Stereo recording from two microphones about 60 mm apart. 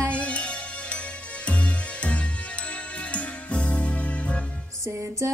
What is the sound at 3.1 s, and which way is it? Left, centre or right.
Music, left.